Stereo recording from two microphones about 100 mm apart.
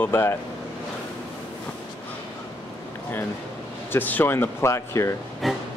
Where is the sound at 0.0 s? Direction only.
25° left (ahead or behind).